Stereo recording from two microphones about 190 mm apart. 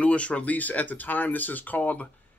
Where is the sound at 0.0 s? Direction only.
5° left (ahead or behind).